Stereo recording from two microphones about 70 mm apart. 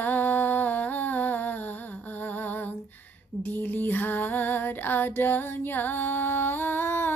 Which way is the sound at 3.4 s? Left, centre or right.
Left.